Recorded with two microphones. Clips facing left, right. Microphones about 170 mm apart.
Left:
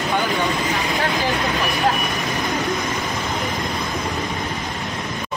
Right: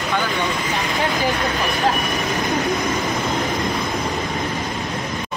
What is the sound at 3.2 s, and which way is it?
Vehicle, centre (ahead or behind).